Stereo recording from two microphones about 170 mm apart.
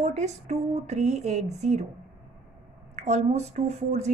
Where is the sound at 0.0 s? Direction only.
40° right (ahead or behind).